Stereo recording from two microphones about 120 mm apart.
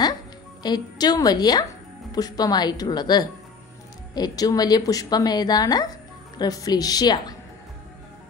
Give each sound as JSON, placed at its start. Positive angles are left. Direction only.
{"t": 0.6, "sound": "speech", "side_deg": 35}